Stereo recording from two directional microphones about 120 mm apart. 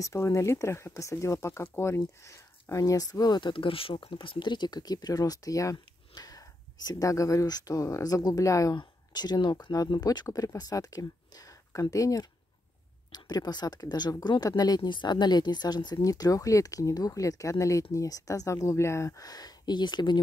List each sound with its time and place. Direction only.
0.0 s speech: 25° left (ahead or behind)